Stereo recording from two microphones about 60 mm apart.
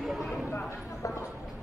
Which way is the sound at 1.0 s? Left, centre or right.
Left.